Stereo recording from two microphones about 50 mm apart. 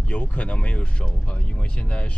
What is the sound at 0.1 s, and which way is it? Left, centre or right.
Speech, left.